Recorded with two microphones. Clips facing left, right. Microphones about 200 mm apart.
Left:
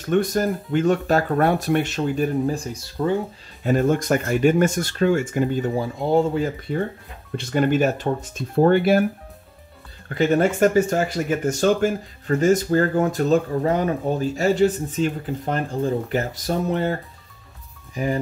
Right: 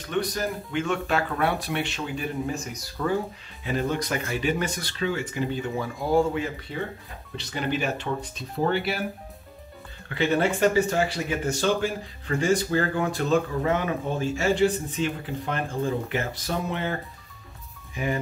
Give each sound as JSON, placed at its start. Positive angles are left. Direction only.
{"t": 0.0, "sound": "speech", "side_deg": 45}
{"t": 3.6, "sound": "speech", "side_deg": 45}
{"t": 5.8, "sound": "speech", "side_deg": 25}
{"t": 6.7, "sound": "speech", "side_deg": 55}
{"t": 10.0, "sound": "speech", "side_deg": 45}